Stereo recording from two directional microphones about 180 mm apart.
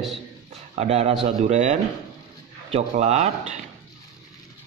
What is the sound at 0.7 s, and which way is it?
A man's voice, 35° right (ahead or behind).